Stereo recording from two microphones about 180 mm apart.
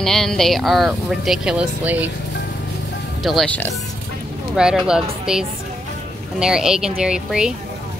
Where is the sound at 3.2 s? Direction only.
5° left (ahead or behind).